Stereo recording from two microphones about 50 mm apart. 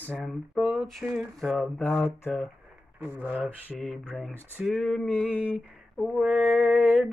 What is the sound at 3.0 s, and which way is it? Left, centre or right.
Speech, right.